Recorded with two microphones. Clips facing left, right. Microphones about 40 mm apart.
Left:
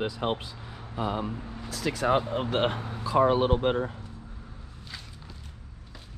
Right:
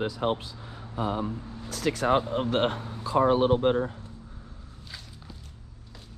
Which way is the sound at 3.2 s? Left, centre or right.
Left.